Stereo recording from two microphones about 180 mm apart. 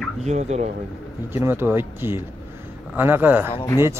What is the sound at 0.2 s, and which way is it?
Speech, 40° right (ahead or behind).